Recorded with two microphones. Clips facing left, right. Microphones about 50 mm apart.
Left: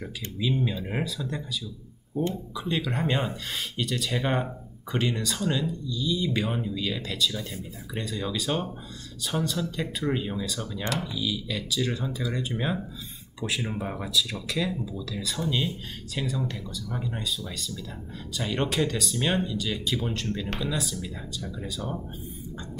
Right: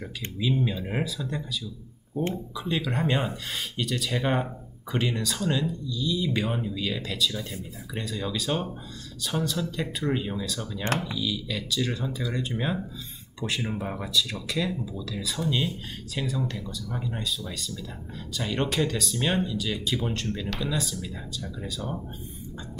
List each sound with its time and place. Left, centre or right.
0.4 s speech: centre